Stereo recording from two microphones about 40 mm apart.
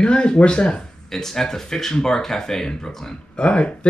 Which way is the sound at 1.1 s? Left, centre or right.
Centre.